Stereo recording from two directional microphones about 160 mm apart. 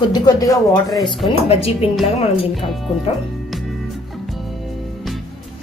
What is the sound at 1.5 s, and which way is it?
Speech, 40° left (ahead or behind).